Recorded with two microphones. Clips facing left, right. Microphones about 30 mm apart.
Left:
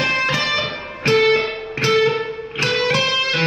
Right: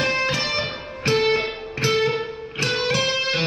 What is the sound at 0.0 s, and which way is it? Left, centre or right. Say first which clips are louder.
Music: left 3 dB; left.